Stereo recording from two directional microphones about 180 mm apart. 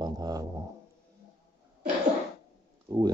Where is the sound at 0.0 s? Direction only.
20° right (ahead or behind).